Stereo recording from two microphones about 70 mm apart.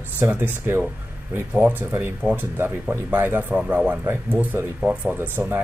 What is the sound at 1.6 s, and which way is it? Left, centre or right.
Speech, right.